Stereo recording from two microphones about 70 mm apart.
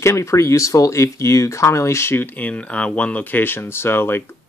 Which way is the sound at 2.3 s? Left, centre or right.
Centre.